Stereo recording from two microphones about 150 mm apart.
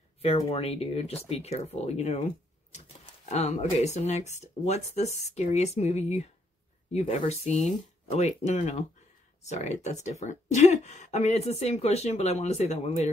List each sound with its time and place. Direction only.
0.5 s speech: 40° left (ahead or behind)
3.3 s speech: 50° left (ahead or behind)